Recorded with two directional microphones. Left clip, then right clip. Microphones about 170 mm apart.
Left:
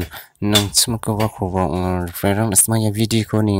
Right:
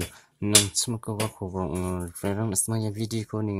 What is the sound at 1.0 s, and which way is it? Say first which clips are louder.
Speech: left 10 dB; 20° left (ahead or behind).